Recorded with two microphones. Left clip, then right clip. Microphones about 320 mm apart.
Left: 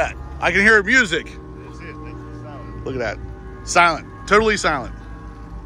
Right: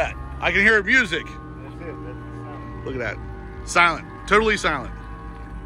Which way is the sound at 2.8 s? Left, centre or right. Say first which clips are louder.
Left 4 dB; centre.